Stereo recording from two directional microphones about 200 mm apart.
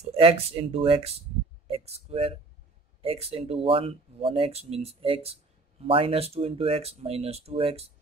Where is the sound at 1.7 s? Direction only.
30° right (ahead or behind).